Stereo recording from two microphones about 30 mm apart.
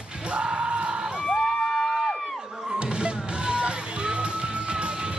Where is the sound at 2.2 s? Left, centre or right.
Centre.